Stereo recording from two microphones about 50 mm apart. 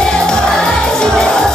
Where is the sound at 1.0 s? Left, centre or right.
Centre.